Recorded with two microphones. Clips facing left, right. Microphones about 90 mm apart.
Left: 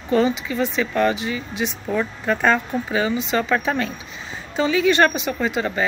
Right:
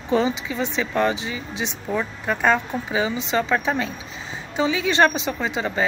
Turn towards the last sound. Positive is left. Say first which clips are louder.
# left 3 dB
turn(degrees=-15)  # may be behind; listen again after turning